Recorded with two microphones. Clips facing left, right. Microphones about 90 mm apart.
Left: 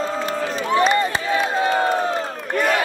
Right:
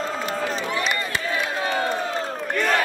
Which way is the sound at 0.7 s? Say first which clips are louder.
Left 8 dB; 35° left (ahead or behind).